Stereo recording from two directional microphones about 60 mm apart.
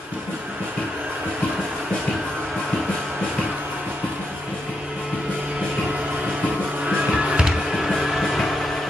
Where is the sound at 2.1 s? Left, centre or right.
Centre.